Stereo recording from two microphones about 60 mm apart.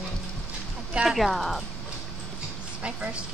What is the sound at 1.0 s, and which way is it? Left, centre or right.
Speech, centre.